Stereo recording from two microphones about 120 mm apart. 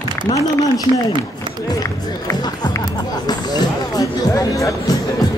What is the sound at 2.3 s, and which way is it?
Music, 30° left (ahead or behind).